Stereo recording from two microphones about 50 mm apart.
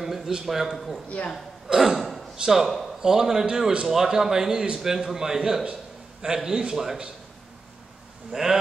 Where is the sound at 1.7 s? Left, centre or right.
Centre.